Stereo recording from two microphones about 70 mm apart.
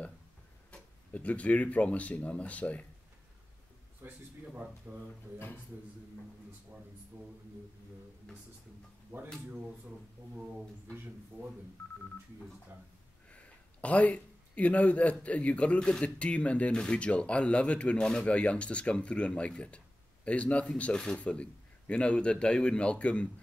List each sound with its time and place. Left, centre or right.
0.7 s speech: centre
4.0 s a man's voice: right
10.9 s a man's voice: right
13.3 s a sound: centre
15.2 s speech: centre